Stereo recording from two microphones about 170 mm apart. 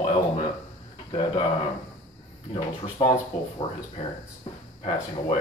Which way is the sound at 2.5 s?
30° left (ahead or behind).